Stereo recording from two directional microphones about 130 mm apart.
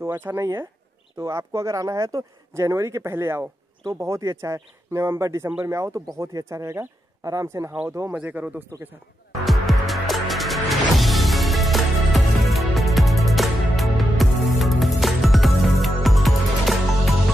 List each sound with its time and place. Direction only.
0.0 s speech: 15° right (ahead or behind)
9.4 s music: centre (ahead or behind)